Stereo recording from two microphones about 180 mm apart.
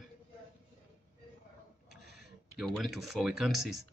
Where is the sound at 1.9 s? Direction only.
Centre (ahead or behind).